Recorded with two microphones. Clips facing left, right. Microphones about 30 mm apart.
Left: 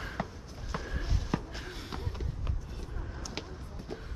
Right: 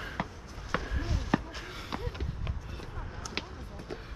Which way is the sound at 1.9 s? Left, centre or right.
Right.